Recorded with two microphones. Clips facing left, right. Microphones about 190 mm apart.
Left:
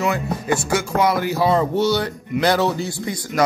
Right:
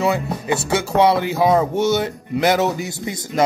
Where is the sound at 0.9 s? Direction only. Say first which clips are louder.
Right 4 dB; 25° right (ahead or behind).